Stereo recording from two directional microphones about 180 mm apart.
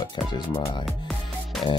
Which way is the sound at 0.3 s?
25° left (ahead or behind).